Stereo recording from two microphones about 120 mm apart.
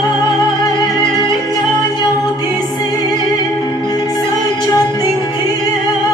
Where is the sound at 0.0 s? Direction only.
35° left (ahead or behind).